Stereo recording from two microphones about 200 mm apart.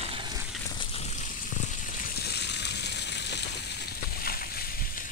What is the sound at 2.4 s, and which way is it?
Water, 60° left (ahead or behind).